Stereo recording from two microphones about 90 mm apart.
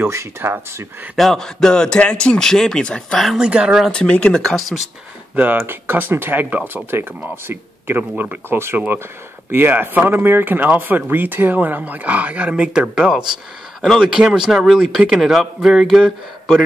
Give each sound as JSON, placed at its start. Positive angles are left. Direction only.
{"t": 0.0, "sound": "speech", "side_deg": -25}
{"t": 1.1, "sound": "a man's voice", "side_deg": 5}
{"t": 3.3, "sound": "speech", "side_deg": -10}
{"t": 3.9, "sound": "a man's voice", "side_deg": 10}
{"t": 5.3, "sound": "speech", "side_deg": -20}